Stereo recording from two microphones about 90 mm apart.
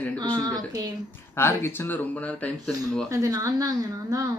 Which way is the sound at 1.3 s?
25° left (ahead or behind).